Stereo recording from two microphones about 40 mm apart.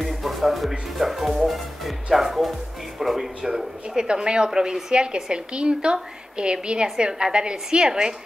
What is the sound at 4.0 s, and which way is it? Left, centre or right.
A woman's voice, right.